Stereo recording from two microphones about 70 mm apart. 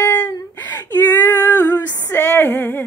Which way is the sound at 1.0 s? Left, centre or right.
Left.